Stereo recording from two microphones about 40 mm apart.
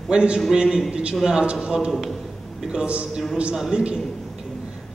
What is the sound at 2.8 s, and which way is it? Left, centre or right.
Speech, right.